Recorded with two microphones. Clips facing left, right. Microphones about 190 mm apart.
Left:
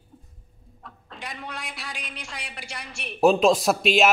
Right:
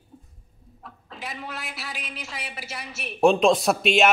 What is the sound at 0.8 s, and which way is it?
A woman's voice, centre (ahead or behind).